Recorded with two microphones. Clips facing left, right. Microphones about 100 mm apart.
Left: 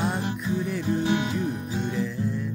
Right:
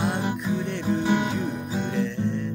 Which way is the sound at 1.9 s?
5° left (ahead or behind).